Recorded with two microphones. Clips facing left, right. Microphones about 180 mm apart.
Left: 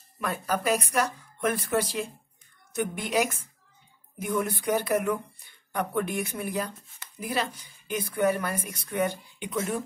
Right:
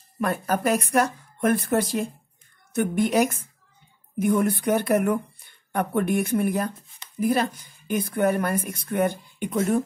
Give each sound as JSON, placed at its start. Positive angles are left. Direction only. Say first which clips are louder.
{"t": 0.2, "sound": "a woman's voice", "louder": "right 5 dB", "side_deg": -50}